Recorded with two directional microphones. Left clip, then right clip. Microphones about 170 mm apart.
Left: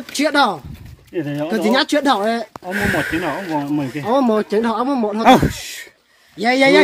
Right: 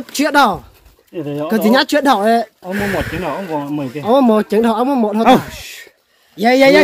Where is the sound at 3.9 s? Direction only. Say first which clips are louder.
Right 5 dB; 40° right (ahead or behind).